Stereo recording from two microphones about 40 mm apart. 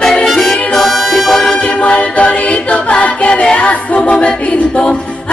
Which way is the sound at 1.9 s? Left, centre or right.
Left.